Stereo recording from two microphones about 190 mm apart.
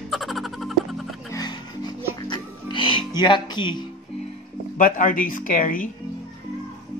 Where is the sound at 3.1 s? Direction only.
25° left (ahead or behind).